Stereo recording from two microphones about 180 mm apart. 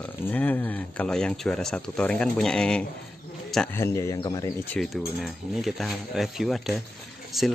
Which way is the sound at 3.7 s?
15° left (ahead or behind).